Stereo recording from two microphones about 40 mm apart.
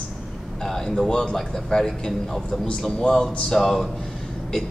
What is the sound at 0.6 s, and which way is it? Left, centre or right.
A man's voice, centre.